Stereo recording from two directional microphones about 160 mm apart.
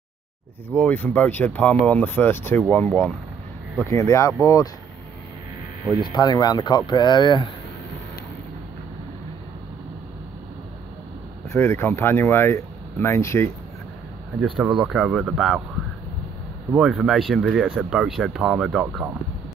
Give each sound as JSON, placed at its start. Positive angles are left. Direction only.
{"t": 0.7, "sound": "speech", "side_deg": 10}
{"t": 6.0, "sound": "speech", "side_deg": 25}
{"t": 11.4, "sound": "speech", "side_deg": 15}
{"t": 14.6, "sound": "speech", "side_deg": -5}
{"t": 16.7, "sound": "speech", "side_deg": -5}